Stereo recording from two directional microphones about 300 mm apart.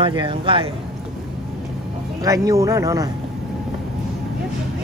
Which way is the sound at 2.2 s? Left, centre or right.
Centre.